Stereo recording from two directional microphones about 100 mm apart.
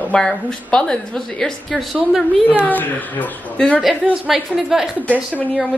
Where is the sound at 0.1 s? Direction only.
5° left (ahead or behind).